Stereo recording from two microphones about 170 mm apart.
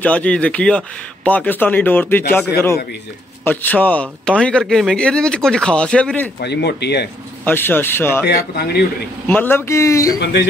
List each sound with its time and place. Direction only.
0.0 s speech: 10° left (ahead or behind)
3.4 s speech: 10° left (ahead or behind)
6.4 s speech: 80° left
7.4 s speech: 10° left (ahead or behind)
8.5 s speech: 70° left (ahead or behind)
9.3 s speech: 10° left (ahead or behind)
10.2 s speech: 90° left